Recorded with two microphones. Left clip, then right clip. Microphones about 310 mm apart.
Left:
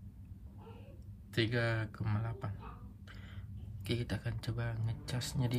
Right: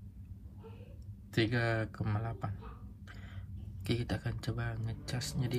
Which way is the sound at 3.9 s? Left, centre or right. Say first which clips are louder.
Right 2 dB; centre.